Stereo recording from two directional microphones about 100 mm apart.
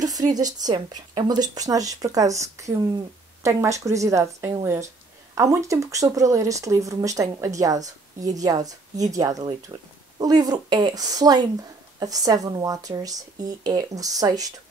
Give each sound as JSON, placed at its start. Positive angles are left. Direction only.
{"t": 0.0, "sound": "speech", "side_deg": -40}